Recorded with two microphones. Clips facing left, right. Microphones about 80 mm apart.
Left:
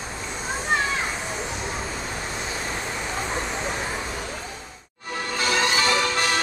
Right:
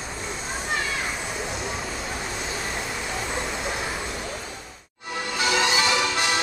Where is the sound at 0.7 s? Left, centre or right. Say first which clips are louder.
Left 5 dB; left.